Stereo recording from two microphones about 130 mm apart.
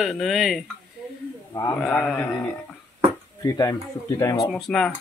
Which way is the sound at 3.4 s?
25° left (ahead or behind).